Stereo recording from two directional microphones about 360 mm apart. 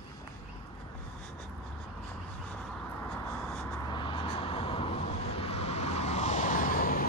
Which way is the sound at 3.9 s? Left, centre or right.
Centre.